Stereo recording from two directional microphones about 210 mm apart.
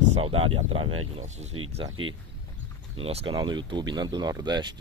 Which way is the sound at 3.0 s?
25° right (ahead or behind).